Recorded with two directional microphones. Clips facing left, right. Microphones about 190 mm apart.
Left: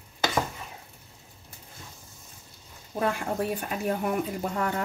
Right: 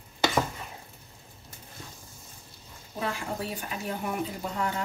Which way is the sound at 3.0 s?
55° left (ahead or behind).